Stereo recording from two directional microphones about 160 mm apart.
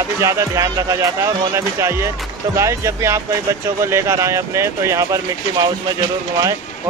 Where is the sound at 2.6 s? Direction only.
20° right (ahead or behind).